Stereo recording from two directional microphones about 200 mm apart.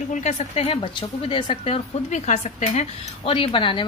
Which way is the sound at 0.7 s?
25° left (ahead or behind).